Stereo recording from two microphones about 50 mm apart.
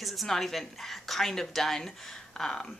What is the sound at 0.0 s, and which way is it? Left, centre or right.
A woman's voice, centre.